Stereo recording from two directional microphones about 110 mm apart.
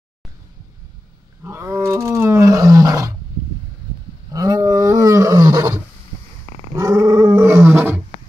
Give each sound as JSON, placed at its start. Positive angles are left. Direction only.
{"t": 1.4, "sound": "roar", "side_deg": -20}
{"t": 4.3, "sound": "roar", "side_deg": -30}